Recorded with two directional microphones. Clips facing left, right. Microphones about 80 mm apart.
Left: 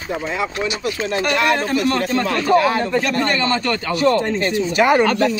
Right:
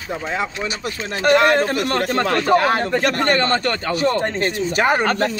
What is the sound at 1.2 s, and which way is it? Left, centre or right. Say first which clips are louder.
A man's voice: right 5 dB; right.